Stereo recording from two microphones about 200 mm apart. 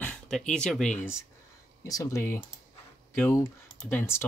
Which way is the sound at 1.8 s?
15° left (ahead or behind).